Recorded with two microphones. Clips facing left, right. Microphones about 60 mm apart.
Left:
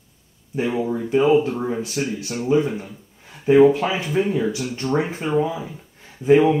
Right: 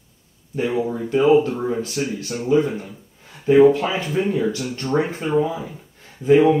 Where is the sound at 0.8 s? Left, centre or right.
Centre.